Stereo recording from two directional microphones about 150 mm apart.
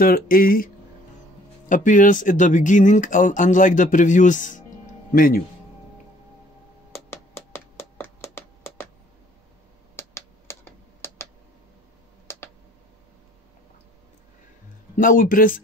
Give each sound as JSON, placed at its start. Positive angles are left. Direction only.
{"t": 0.0, "sound": "speech", "side_deg": 75}
{"t": 1.7, "sound": "speech", "side_deg": 60}
{"t": 5.1, "sound": "speech", "side_deg": 70}
{"t": 6.9, "sound": "music", "side_deg": 15}
{"t": 9.9, "sound": "computer keyboard", "side_deg": 15}
{"t": 15.0, "sound": "speech", "side_deg": 65}